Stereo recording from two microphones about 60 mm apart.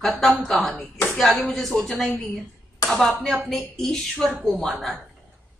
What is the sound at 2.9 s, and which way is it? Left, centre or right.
Speech, centre.